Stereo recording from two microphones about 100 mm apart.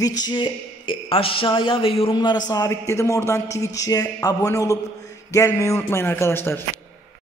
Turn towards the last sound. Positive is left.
turn(degrees=20)  # may be behind; listen again after turning